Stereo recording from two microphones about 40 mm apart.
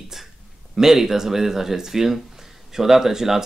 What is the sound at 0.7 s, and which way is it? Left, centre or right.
Speech, centre.